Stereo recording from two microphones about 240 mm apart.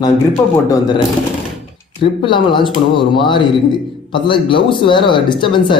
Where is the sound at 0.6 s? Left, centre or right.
Centre.